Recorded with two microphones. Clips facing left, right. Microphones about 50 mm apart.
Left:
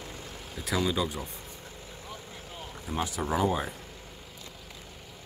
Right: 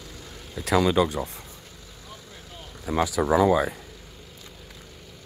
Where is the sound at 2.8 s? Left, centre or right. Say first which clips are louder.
Right 8 dB; right.